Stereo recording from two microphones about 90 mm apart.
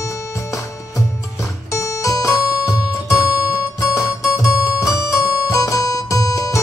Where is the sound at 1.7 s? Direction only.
35° left (ahead or behind).